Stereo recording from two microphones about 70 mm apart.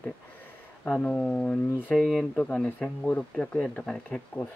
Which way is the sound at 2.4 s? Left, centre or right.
Centre.